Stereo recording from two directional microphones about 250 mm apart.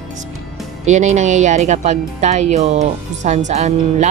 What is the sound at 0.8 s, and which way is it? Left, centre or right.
Speech, right.